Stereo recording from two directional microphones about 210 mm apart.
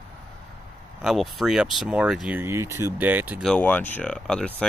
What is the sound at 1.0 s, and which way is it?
Speech, centre (ahead or behind).